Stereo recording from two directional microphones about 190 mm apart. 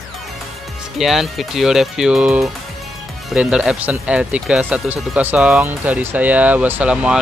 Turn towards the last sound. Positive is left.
turn(degrees=-5)  # may be behind; listen again after turning